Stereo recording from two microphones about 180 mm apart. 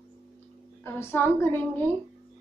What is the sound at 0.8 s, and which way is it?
A woman's voice, 10° left (ahead or behind).